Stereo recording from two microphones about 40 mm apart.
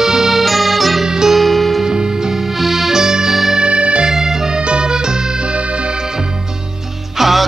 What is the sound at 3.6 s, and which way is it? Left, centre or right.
Music, right.